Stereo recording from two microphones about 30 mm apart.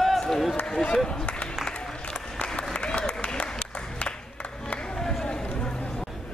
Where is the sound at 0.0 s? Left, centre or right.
Centre.